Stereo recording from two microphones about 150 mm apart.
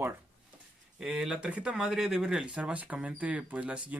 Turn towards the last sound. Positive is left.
turn(degrees=-10)  # may be behind; listen again after turning